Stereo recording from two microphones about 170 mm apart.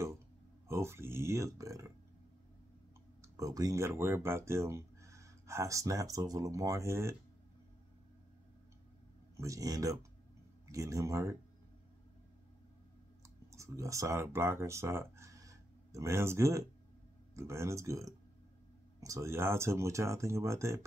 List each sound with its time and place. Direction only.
0.7 s speech: 15° right (ahead or behind)
3.2 s speech: 20° right (ahead or behind)
9.4 s speech: 20° right (ahead or behind)
13.5 s speech: 20° right (ahead or behind)